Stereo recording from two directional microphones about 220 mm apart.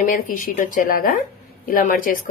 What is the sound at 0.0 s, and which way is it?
A woman's voice, 40° left (ahead or behind).